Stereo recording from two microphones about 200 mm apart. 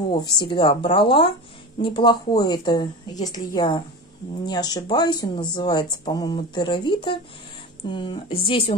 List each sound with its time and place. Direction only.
0.1 s speech: 25° left (ahead or behind)